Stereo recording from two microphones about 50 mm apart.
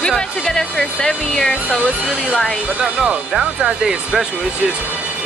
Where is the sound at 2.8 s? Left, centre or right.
Centre.